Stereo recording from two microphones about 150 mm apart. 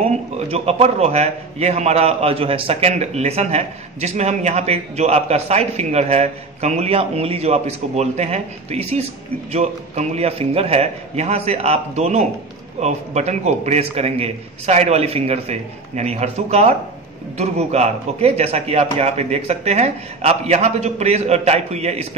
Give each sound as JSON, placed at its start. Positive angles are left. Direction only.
{"t": 0.0, "sound": "a man's voice", "side_deg": -45}